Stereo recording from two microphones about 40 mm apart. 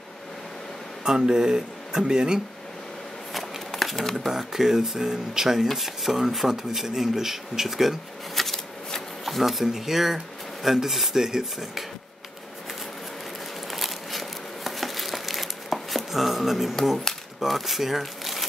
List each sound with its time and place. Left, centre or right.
1.0 s speech: centre
3.3 s shuffling cards: centre
4.3 s speech: centre
8.5 s speech: centre
13.7 s a sound: centre
17.4 s speech: centre